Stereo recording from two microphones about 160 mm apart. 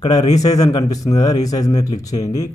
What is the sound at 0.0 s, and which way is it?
Speech, 25° left (ahead or behind).